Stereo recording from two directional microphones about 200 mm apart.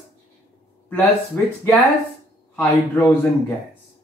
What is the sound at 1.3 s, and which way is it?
Speech, 10° left (ahead or behind).